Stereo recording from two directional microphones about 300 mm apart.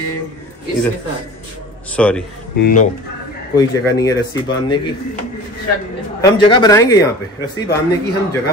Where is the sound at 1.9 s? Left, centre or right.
Centre.